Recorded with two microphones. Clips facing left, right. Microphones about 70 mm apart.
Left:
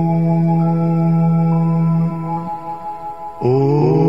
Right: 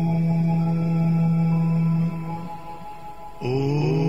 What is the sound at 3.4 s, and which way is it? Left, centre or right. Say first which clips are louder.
Mantra: left 10 dB; left.